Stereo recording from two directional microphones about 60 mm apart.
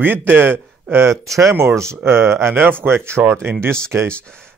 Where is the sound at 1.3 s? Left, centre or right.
Right.